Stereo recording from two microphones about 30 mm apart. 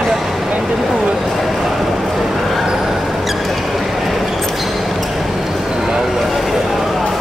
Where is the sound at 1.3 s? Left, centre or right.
Centre.